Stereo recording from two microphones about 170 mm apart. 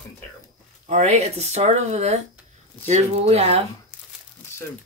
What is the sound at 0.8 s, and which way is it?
Speech, 40° right (ahead or behind).